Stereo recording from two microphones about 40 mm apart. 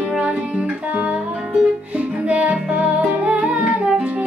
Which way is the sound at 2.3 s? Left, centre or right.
Right.